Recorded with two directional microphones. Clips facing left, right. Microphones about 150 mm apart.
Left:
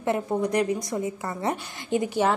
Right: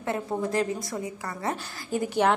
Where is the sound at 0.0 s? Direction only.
20° left (ahead or behind).